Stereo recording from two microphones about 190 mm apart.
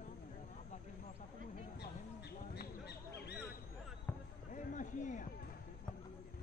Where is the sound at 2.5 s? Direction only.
60° left (ahead or behind).